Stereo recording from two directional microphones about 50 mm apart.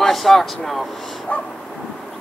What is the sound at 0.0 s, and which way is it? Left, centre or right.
Vehicle, centre.